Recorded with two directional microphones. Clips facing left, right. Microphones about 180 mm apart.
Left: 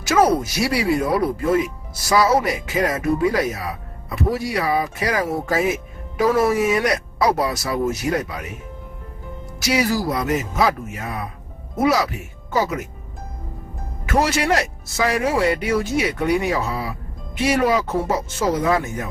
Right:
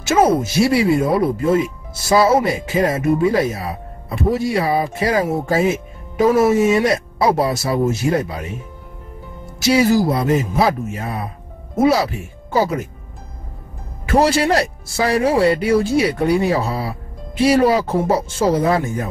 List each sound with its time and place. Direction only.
0.0 s speech: 25° right (ahead or behind)
9.6 s speech: 25° right (ahead or behind)
14.0 s speech: 30° right (ahead or behind)